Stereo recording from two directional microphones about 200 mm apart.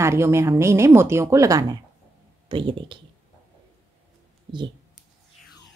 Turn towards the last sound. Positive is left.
turn(degrees=-25)  # may be behind; listen again after turning